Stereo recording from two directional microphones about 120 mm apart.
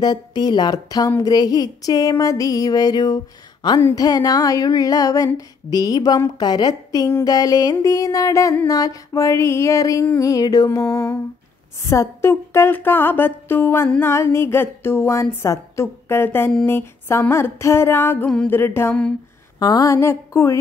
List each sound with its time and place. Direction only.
0.0 s a sound: 35° left (ahead or behind)
7.7 s speech: 25° left (ahead or behind)
19.6 s speech: 30° left (ahead or behind)